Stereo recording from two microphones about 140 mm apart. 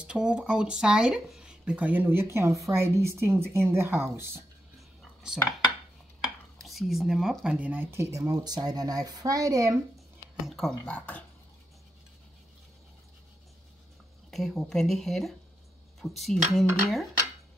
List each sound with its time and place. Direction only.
0.0 s speech: 5° right (ahead or behind)
4.7 s a sound: 5° right (ahead or behind)
6.2 s speech: centre (ahead or behind); by 9.8 s 25° right (ahead or behind)
10.4 s speech: centre (ahead or behind)
14.3 s speech: centre (ahead or behind)